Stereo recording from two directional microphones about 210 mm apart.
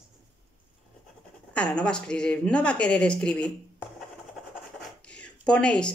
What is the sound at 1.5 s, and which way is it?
A woman's voice, 5° left (ahead or behind).